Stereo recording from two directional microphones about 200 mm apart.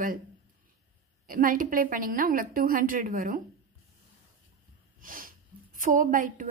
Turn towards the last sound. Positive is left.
turn(degrees=-40)  # may be behind; listen again after turning